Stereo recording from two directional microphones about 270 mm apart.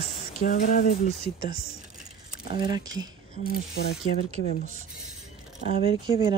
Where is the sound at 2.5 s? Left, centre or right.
Centre.